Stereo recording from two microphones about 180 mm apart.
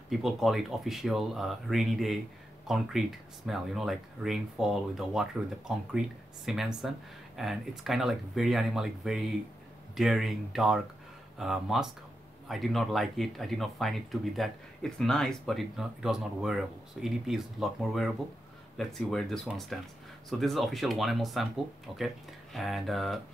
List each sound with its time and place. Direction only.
0.1 s speech: centre (ahead or behind)